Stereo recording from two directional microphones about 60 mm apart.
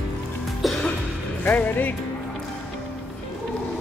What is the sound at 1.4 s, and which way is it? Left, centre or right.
Speech, left.